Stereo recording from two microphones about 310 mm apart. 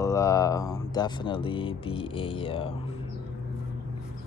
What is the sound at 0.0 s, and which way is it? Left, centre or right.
Speech, centre.